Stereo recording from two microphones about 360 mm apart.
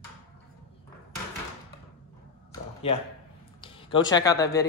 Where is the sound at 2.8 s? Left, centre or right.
Centre.